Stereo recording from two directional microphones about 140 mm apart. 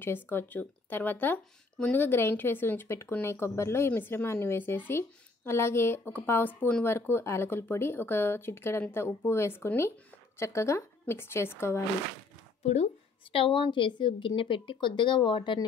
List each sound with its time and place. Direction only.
0.0 s a woman's voice: 15° left (ahead or behind)
13.3 s a woman's voice: 40° left (ahead or behind)